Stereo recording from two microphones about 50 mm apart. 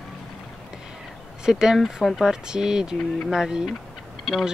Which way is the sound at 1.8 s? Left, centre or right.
Centre.